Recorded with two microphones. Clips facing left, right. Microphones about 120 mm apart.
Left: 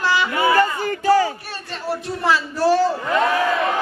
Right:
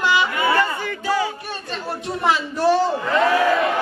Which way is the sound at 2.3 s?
20° right (ahead or behind).